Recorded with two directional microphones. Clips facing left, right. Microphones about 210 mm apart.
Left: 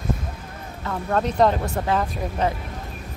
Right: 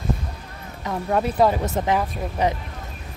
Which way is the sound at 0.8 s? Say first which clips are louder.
Right 1 dB; 10° right (ahead or behind).